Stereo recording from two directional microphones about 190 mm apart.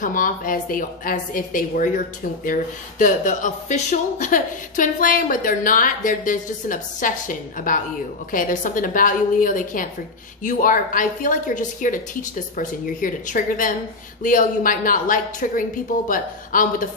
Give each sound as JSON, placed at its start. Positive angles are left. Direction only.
{"t": 0.0, "sound": "speech", "side_deg": 45}